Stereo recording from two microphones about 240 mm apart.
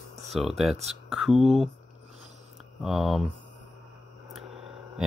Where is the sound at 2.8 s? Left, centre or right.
Centre.